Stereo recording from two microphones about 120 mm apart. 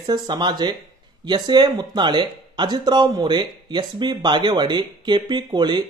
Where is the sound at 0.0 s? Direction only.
40° right (ahead or behind).